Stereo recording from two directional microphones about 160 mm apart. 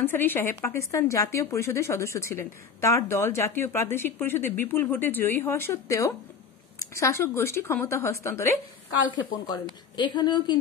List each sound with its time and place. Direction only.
0.0 s a woman's voice: 15° left (ahead or behind)
9.7 s a woman's voice: 25° left (ahead or behind)